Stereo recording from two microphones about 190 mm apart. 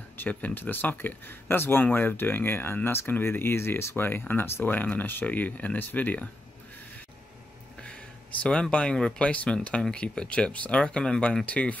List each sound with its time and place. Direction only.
0.2 s speech: 10° left (ahead or behind)
8.4 s speech: 5° left (ahead or behind)